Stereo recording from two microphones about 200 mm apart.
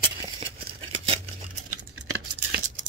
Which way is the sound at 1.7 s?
90° right.